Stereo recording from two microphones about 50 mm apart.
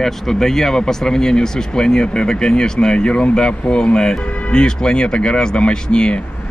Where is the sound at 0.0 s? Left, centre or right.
Centre.